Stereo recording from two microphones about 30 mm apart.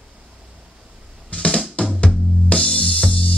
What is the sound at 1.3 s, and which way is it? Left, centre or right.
Music, left.